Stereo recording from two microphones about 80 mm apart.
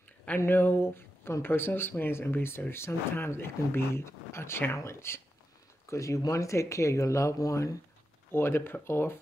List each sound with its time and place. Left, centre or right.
0.4 s speech: left
8.3 s speech: left